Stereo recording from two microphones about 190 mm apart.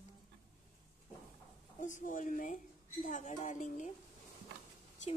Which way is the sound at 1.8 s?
40° left (ahead or behind).